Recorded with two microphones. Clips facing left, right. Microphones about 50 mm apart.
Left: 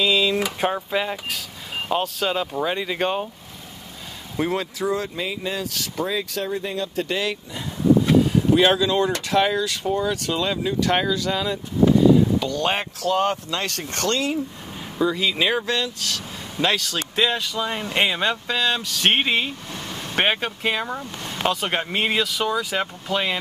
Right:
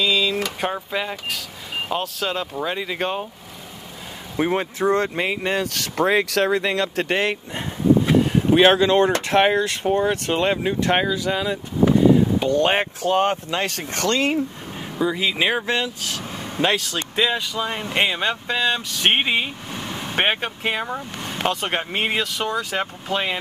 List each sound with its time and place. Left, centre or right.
0.0 s speech: centre
4.4 s speech: right
4.8 s speech: right
7.1 s speech: right
11.0 s speech: centre
12.4 s speech: right
13.9 s speech: right
15.0 s speech: centre